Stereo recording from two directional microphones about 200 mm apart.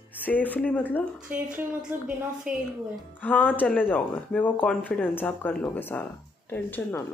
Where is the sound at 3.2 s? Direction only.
5° left (ahead or behind).